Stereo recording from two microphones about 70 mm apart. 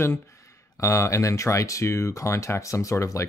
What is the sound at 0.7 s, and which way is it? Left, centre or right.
Speech, left.